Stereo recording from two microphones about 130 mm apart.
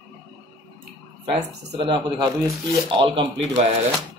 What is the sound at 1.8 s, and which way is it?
Speech, 35° right (ahead or behind).